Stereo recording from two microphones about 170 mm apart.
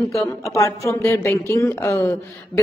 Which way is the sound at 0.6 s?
20° left (ahead or behind).